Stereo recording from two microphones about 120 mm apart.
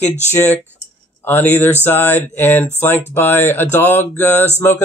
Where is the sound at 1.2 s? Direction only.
15° left (ahead or behind).